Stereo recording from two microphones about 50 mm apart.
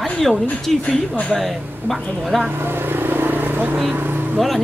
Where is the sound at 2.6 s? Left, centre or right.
Right.